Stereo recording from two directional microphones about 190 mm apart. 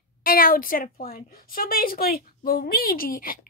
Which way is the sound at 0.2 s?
50° left (ahead or behind).